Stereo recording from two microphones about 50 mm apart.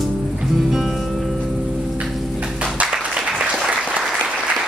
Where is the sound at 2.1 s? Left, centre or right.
Centre.